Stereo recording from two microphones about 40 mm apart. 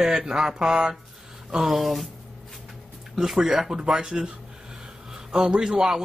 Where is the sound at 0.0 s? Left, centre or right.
Centre.